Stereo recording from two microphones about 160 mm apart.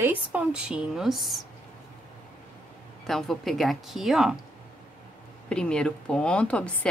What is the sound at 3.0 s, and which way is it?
Speech, centre (ahead or behind).